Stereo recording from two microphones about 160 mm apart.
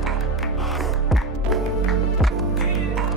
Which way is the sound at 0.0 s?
Centre (ahead or behind).